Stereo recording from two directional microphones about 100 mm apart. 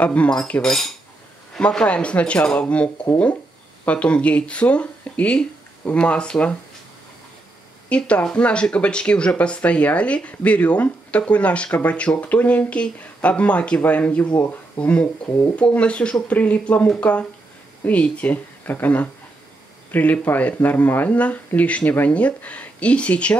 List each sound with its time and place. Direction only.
0.0 s speech: 15° left (ahead or behind)
0.4 s cutlery: 5° left (ahead or behind)
1.5 s speech: 5° left (ahead or behind)
7.9 s speech: 10° left (ahead or behind)